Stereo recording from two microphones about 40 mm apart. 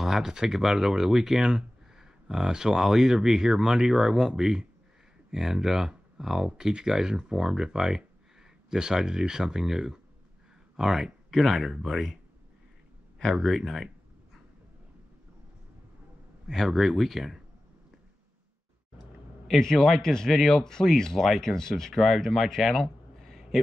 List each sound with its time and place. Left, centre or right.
0.0 s speech: centre
13.3 s speech: centre
16.4 s speech: centre
19.6 s a man's voice: centre
20.3 s a man's voice: centre
22.2 s a sound: centre